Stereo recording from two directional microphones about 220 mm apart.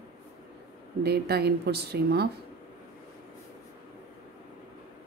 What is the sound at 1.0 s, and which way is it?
Speech, 45° right (ahead or behind).